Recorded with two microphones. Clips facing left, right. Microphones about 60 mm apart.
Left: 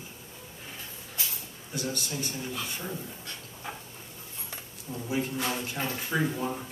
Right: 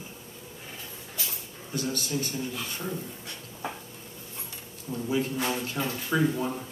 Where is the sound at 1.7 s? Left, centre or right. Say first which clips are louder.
Right 3 dB; right.